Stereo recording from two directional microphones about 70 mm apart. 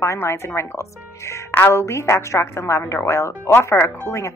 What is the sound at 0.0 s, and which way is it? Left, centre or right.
A woman's voice, left.